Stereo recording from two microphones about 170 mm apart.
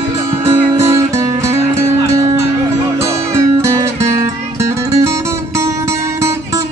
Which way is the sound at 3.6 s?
15° right (ahead or behind).